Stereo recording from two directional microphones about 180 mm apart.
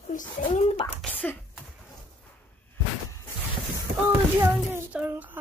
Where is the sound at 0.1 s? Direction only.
45° left (ahead or behind).